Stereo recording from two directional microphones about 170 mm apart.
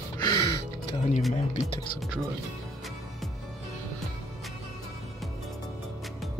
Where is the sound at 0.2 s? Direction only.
20° left (ahead or behind).